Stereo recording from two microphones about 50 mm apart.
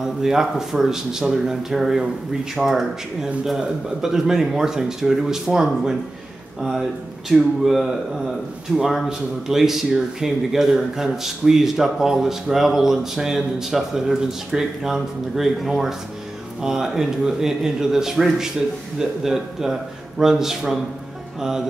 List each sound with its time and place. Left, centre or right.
0.0 s speech: centre